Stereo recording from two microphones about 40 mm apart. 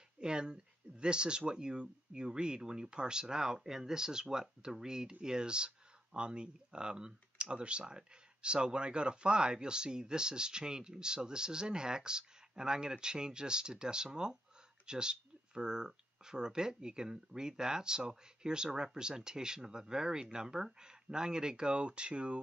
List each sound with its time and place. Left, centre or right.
0.2 s speech: right